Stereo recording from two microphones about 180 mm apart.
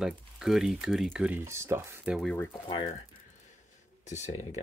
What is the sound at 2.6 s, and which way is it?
Speech, 25° left (ahead or behind).